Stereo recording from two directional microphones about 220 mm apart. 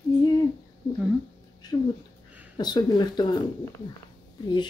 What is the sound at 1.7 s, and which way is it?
Speech, 15° left (ahead or behind).